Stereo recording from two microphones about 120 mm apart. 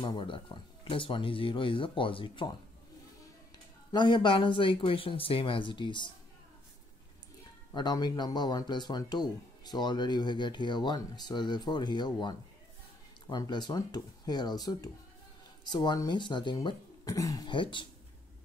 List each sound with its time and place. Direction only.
0.0 s speech: 45° left (ahead or behind)
3.9 s speech: 40° left (ahead or behind)
7.7 s speech: 35° left (ahead or behind)